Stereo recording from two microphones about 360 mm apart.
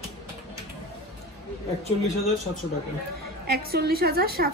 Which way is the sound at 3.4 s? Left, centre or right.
Right.